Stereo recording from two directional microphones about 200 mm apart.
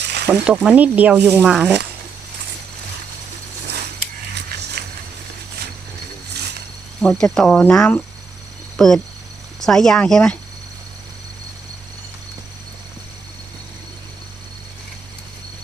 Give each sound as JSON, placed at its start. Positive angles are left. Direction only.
{"t": 0.0, "sound": "sizzle", "side_deg": -55}
{"t": 0.7, "sound": "speech", "side_deg": -10}
{"t": 7.0, "sound": "speech", "side_deg": 5}